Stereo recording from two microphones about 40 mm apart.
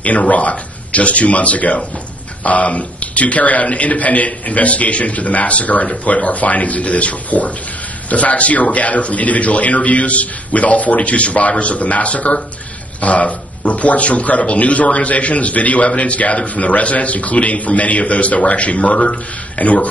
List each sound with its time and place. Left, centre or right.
0.3 s a man's voice: left